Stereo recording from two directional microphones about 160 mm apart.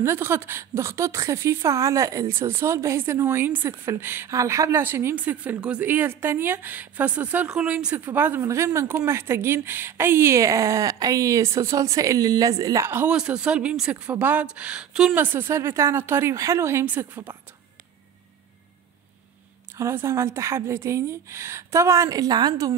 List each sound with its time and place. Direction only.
0.0 s a woman's voice: 15° right (ahead or behind)
19.8 s a woman's voice: 15° right (ahead or behind)